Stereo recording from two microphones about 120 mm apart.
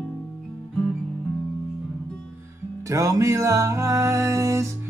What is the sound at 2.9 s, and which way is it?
Music, 25° right (ahead or behind).